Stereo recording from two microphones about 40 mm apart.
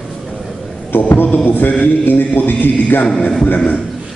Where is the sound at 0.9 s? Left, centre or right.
Left.